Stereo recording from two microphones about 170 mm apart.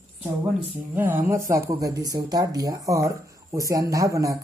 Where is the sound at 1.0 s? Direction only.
10° right (ahead or behind).